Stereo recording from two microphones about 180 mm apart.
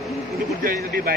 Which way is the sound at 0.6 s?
50° right (ahead or behind).